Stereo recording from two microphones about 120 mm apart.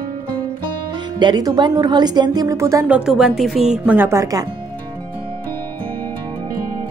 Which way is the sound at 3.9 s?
15° right (ahead or behind).